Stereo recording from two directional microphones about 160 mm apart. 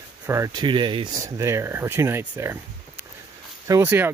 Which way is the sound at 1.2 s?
20° right (ahead or behind).